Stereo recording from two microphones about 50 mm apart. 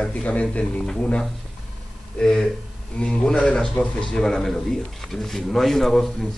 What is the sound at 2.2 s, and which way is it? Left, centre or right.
A man's voice, centre.